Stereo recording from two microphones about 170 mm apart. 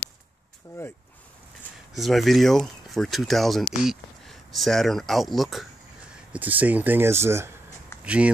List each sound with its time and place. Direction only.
2.0 s speech: centre (ahead or behind)